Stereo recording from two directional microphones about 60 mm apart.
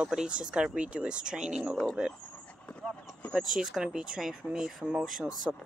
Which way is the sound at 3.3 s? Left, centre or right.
Centre.